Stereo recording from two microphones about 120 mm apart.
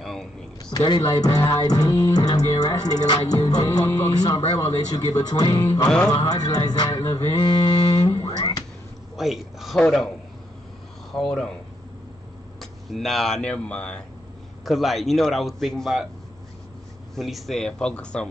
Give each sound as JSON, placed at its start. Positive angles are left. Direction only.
{"t": 0.0, "sound": "a sound", "side_deg": 5}
{"t": 0.7, "sound": "music", "side_deg": 35}
{"t": 4.3, "sound": "speech", "side_deg": 55}
{"t": 5.0, "sound": "music", "side_deg": 30}
{"t": 5.9, "sound": "speech", "side_deg": 5}
{"t": 6.1, "sound": "music", "side_deg": 35}
{"t": 8.4, "sound": "music", "side_deg": 35}
{"t": 9.1, "sound": "speech", "side_deg": 0}
{"t": 11.1, "sound": "speech", "side_deg": 5}
{"t": 12.5, "sound": "speech", "side_deg": 0}
{"t": 17.1, "sound": "speech", "side_deg": 0}